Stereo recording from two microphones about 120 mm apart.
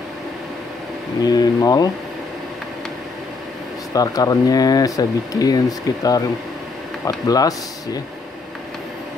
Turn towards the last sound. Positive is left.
turn(degrees=30)  # may be behind; listen again after turning